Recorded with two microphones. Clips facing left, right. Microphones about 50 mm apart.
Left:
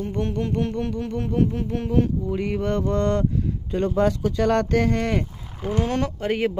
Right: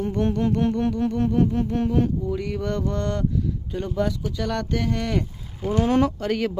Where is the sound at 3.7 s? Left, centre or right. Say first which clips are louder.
Left 5 dB; left.